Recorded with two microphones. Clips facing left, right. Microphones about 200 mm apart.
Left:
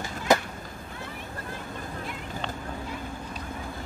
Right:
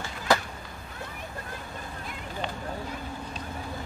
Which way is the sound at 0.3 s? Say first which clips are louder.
Left 2 dB; 20° left (ahead or behind).